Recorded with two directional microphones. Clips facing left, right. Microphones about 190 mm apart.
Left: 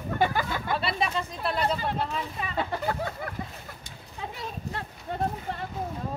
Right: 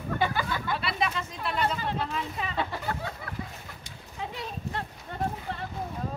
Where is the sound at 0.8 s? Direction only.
30° left (ahead or behind).